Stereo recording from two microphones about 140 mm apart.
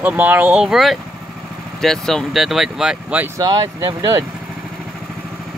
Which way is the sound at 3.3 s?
25° right (ahead or behind).